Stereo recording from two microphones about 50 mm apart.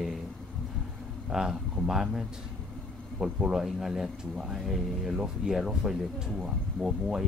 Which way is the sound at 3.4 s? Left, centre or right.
Centre.